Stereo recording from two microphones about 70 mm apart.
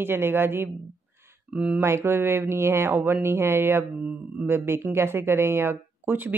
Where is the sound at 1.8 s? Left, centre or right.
Right.